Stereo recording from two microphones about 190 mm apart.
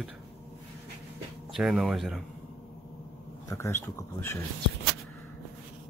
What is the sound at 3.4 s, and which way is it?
Speech, 15° left (ahead or behind).